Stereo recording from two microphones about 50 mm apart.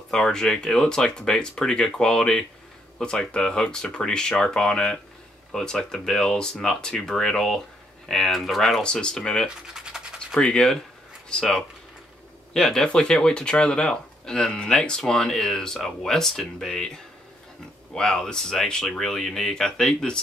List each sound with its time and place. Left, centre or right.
0.1 s speech: centre
8.8 s speech: centre
12.5 s speech: centre